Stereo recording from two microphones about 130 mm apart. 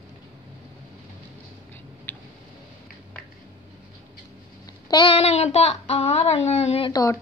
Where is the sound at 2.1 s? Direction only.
15° left (ahead or behind).